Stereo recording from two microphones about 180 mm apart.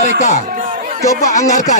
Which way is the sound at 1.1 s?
20° left (ahead or behind).